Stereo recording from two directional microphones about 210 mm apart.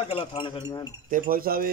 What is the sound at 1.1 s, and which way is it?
Speech, 45° right (ahead or behind).